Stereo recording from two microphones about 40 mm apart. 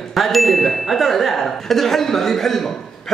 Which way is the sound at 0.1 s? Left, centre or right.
Centre.